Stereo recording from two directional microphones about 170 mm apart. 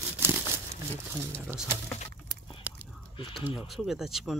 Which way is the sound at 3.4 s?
5° right (ahead or behind).